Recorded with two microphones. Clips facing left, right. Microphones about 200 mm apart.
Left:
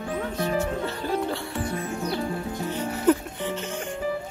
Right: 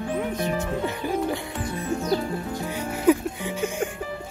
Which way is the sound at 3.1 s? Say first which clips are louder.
Right 2 dB; 10° right (ahead or behind).